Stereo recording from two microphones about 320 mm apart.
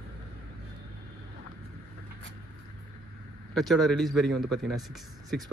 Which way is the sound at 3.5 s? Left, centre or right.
Centre.